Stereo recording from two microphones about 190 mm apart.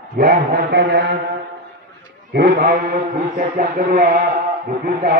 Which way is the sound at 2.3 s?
50° right (ahead or behind).